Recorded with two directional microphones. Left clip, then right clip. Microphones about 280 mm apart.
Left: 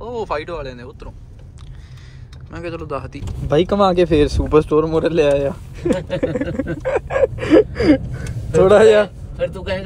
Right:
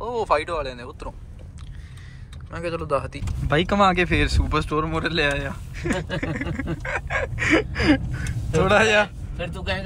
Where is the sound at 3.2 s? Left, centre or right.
Centre.